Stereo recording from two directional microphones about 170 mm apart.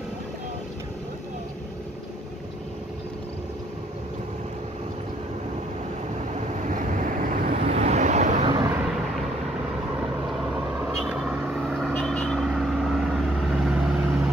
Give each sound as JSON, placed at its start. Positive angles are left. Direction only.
{"t": 6.7, "sound": "vehicle", "side_deg": -50}
{"t": 7.7, "sound": "vehicle", "side_deg": -40}
{"t": 10.9, "sound": "vehicle", "side_deg": 0}